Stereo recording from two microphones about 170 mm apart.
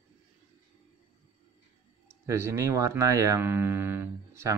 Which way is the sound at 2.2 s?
15° right (ahead or behind).